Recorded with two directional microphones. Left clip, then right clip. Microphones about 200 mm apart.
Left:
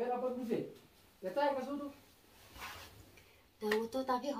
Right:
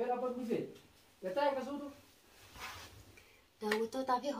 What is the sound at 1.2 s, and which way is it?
Speech, 15° right (ahead or behind).